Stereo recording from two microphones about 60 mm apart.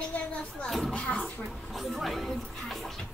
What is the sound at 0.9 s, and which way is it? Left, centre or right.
Speech, left.